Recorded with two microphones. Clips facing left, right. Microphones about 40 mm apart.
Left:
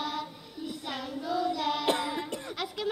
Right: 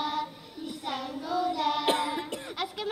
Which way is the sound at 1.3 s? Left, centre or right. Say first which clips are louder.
Right 1 dB; right.